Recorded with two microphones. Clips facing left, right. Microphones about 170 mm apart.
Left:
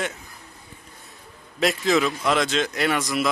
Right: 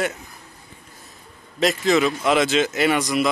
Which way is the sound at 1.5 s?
Centre (ahead or behind).